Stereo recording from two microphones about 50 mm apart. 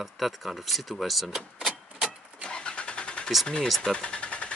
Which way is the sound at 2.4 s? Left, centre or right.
Centre.